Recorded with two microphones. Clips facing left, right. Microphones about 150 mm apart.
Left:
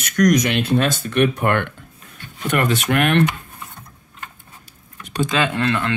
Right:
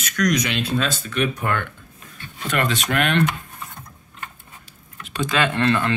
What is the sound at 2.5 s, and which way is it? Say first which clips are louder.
Speech: left 4 dB; 50° left (ahead or behind).